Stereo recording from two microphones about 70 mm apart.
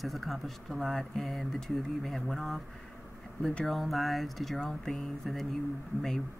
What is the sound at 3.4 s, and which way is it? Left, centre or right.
Speech, centre.